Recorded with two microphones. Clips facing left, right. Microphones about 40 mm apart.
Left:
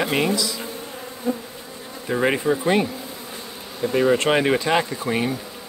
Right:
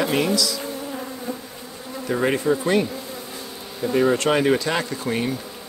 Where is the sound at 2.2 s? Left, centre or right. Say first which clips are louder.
Left 1 dB; centre.